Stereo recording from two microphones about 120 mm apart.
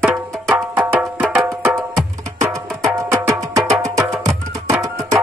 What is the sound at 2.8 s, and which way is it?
Music, 30° right (ahead or behind).